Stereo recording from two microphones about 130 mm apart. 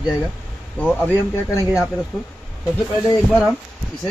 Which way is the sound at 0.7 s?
10° left (ahead or behind).